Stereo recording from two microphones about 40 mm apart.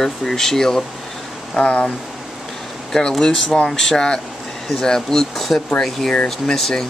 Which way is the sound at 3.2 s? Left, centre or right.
Centre.